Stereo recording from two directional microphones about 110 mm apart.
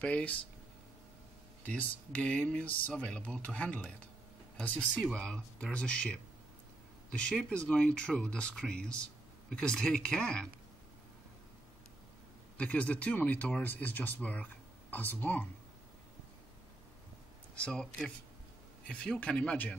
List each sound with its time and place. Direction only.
0.0 s speech: 10° left (ahead or behind)
1.6 s speech: 10° left (ahead or behind)
12.5 s speech: 10° left (ahead or behind)
17.6 s speech: 10° left (ahead or behind)